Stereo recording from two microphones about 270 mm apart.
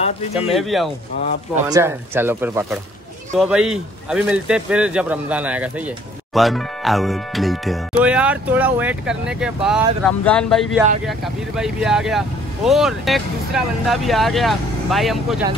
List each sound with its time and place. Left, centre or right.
0.0 s speech: left
0.5 s speech: centre